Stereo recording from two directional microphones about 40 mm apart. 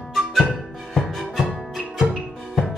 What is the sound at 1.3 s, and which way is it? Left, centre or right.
Music, centre.